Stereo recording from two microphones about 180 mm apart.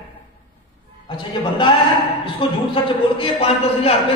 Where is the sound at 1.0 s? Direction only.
30° left (ahead or behind).